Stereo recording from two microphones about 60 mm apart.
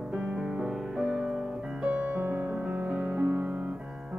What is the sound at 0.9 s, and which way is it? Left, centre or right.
Music, centre.